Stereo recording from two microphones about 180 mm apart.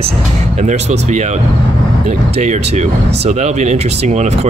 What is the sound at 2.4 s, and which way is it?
Speech, 40° right (ahead or behind).